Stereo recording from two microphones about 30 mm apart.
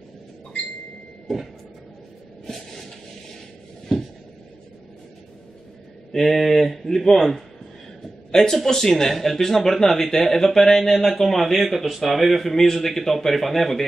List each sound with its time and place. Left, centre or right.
1.3 s speech: centre
3.9 s a sound: centre
6.1 s speech: centre
8.3 s a man's voice: centre
10.8 s speech: centre